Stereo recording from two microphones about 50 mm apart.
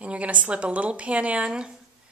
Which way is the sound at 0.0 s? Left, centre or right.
Right.